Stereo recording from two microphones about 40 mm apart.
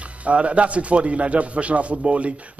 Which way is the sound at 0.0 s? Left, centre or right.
Right.